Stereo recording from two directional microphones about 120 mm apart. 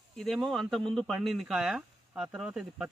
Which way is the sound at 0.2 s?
Centre (ahead or behind).